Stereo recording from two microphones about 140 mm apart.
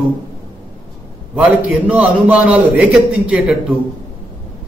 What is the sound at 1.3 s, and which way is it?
A man's voice, 10° right (ahead or behind).